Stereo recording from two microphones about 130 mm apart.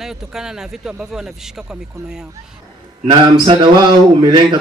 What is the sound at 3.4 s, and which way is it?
Speech, 35° right (ahead or behind).